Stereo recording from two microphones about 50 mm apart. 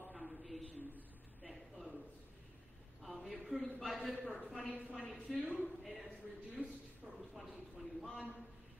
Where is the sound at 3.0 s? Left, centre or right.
Centre.